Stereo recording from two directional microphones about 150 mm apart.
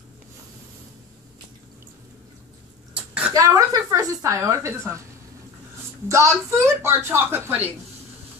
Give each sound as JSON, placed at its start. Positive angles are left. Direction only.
{"t": 3.3, "sound": "speech", "side_deg": -25}
{"t": 6.0, "sound": "speech", "side_deg": -20}